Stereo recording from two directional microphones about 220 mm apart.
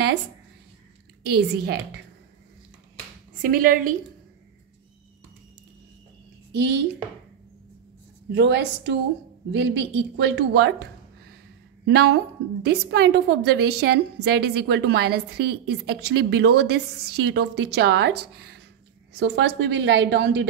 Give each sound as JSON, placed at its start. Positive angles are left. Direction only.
{"t": 1.3, "sound": "a woman's voice", "side_deg": -45}
{"t": 3.4, "sound": "a woman's voice", "side_deg": -40}
{"t": 6.5, "sound": "a woman's voice", "side_deg": -50}
{"t": 8.4, "sound": "a woman's voice", "side_deg": -50}